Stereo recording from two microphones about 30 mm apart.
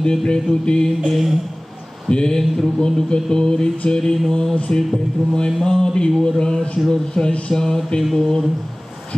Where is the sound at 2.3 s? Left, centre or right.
Centre.